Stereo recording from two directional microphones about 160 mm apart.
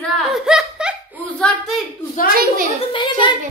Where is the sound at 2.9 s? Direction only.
30° left (ahead or behind).